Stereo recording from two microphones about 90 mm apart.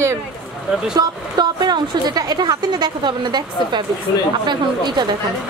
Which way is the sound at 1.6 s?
50° right (ahead or behind).